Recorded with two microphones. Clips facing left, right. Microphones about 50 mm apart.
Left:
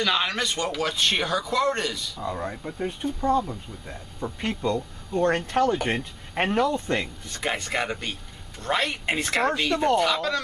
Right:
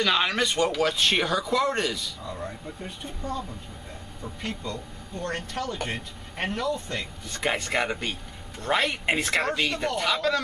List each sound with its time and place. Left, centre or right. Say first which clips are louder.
0.0 s speech: right 1 dB; centre
2.2 s speech: left 9 dB; left
7.2 s speech: right 1 dB; centre